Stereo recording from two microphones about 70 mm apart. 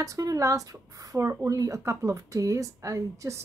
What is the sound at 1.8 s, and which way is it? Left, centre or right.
A woman's voice, right.